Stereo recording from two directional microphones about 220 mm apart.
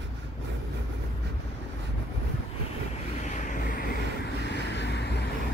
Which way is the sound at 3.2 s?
35° left (ahead or behind).